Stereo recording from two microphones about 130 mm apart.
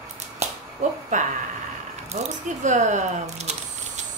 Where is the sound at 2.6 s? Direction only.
70° right (ahead or behind).